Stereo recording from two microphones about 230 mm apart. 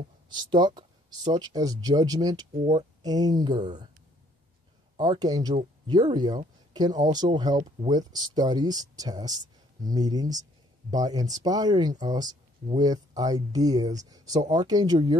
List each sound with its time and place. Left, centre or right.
0.3 s speech: centre
4.9 s speech: centre